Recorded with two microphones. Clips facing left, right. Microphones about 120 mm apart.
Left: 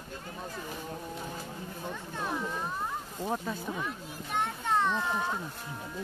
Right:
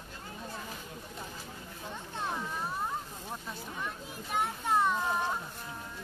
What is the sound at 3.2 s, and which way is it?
Speech, 90° left.